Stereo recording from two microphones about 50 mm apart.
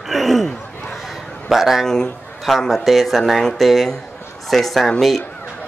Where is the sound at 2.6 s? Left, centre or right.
Centre.